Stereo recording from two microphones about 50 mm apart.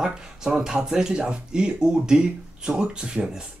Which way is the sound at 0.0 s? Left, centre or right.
Centre.